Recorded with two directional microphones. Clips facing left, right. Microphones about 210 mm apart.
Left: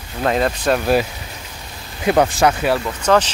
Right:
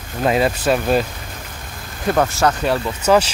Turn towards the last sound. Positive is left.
turn(degrees=-10)  # may be behind; listen again after turning